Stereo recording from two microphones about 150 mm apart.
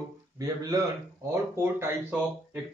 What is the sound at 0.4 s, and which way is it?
Speech, 25° right (ahead or behind).